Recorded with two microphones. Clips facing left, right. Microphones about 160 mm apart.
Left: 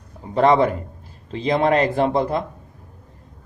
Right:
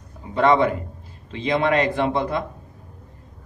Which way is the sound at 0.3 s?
35° left (ahead or behind).